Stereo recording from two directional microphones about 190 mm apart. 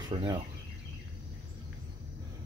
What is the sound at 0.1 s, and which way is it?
Speech, 25° right (ahead or behind).